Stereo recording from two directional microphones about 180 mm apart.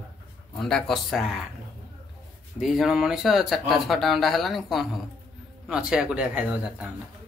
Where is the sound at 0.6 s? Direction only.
5° left (ahead or behind).